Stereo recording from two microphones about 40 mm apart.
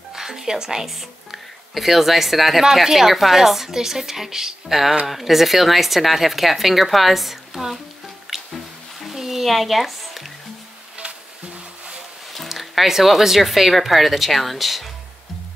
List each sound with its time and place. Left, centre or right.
0.1 s a woman's voice: centre
8.3 s music: centre
11.0 s music: right
12.4 s speech: centre